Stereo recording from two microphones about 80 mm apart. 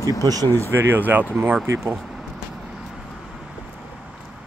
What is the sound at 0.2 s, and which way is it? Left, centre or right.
Speech, right.